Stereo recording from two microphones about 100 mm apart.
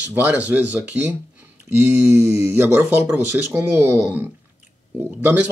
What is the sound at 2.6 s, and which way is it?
Speech, 25° right (ahead or behind).